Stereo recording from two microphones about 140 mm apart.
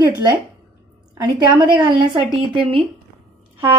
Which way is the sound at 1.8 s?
35° right (ahead or behind).